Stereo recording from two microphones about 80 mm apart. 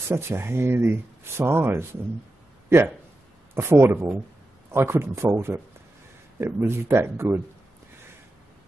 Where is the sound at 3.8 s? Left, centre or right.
Right.